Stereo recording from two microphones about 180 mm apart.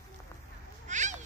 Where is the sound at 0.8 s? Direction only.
40° right (ahead or behind).